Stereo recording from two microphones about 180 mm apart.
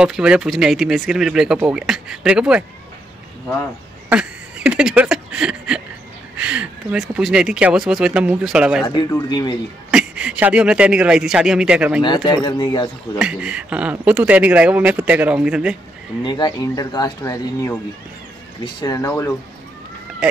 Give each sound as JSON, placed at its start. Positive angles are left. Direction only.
{"t": 0.0, "sound": "speech", "side_deg": -5}
{"t": 4.1, "sound": "a sound", "side_deg": -5}
{"t": 6.3, "sound": "speech", "side_deg": -5}
{"t": 8.8, "sound": "speech", "side_deg": 20}
{"t": 9.8, "sound": "speech", "side_deg": -5}
{"t": 12.3, "sound": "speech", "side_deg": 25}
{"t": 13.2, "sound": "speech", "side_deg": -5}
{"t": 16.3, "sound": "speech", "side_deg": 25}